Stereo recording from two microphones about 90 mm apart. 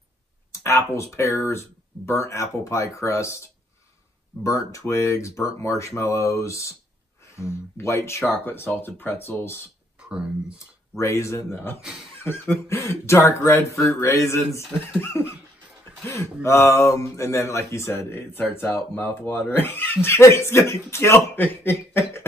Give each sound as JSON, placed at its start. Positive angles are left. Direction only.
{"t": 0.5, "sound": "speech", "side_deg": 30}
{"t": 11.0, "sound": "speech", "side_deg": 35}
{"t": 16.4, "sound": "speech", "side_deg": 30}